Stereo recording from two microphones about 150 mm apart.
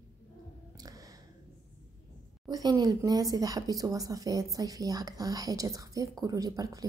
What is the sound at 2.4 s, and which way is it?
Speech, 25° right (ahead or behind).